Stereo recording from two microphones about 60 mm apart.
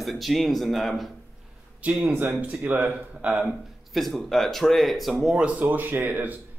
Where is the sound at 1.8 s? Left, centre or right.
Right.